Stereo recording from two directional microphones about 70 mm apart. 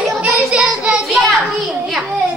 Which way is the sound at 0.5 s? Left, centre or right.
Centre.